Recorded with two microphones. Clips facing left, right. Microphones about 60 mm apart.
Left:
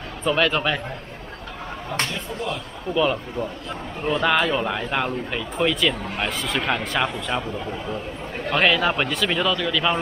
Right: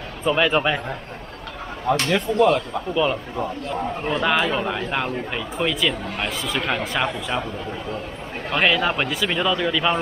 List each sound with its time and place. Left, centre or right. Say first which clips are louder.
0.2 s a man's voice: right 2 dB; centre
2.0 s speech: right 11 dB; right
2.9 s a man's voice: left 1 dB; centre
8.5 s a man's voice: even; centre